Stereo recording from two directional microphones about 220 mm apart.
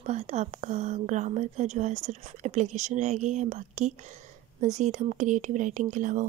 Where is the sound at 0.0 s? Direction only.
30° right (ahead or behind).